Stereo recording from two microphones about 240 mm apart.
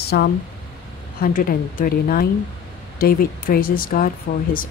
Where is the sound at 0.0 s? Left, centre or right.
Left.